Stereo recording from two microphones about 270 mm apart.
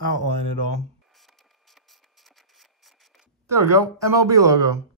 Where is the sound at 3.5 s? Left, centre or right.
Centre.